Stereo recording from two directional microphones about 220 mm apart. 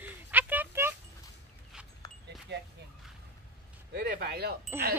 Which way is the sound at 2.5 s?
50° right (ahead or behind).